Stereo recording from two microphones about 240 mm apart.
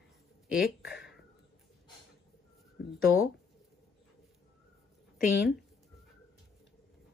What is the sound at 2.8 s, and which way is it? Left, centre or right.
Speech, left.